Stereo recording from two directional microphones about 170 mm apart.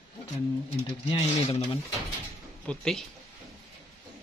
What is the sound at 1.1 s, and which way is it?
Speech, 35° left (ahead or behind).